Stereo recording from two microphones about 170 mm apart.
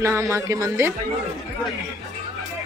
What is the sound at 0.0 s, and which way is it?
Speech, 20° right (ahead or behind).